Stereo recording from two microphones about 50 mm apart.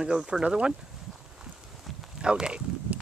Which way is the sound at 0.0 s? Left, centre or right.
Centre.